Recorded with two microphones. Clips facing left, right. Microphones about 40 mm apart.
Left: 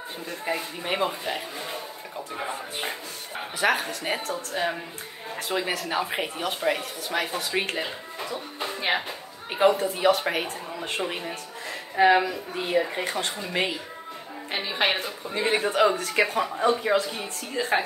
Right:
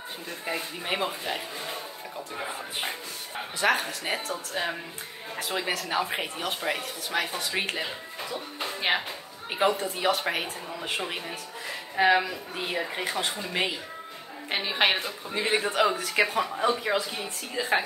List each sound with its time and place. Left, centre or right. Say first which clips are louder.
0.5 s a woman's voice: left 2 dB; centre
5.3 s a woman's voice: left 2 dB; centre
14.5 s a woman's voice: right 1 dB; centre
15.0 s a woman's voice: left 2 dB; centre